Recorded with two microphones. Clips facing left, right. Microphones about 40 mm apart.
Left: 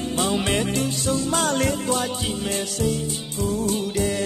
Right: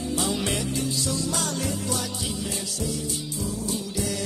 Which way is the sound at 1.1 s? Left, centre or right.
Left.